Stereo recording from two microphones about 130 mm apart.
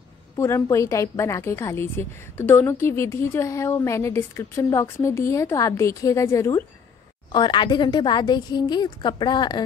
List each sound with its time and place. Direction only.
0.4 s a woman's voice: 20° left (ahead or behind)
7.3 s a woman's voice: 35° left (ahead or behind)